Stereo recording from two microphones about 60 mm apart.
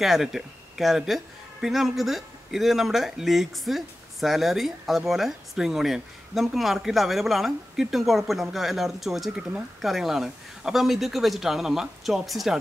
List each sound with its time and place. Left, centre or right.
0.0 s speech: centre